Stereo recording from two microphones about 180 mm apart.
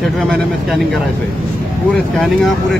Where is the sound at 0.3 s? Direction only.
Centre (ahead or behind).